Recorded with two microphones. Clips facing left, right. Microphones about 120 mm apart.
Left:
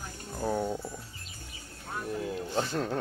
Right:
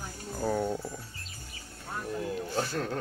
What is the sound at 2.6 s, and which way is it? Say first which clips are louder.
Speech: left 2 dB; 20° left (ahead or behind).